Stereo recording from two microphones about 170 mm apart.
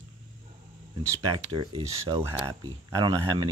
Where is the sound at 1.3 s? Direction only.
30° right (ahead or behind).